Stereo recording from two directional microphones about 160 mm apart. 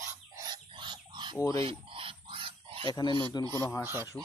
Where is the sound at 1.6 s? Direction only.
35° right (ahead or behind).